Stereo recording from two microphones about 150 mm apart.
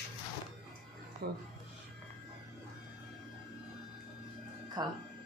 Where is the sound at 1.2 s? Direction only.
90° right.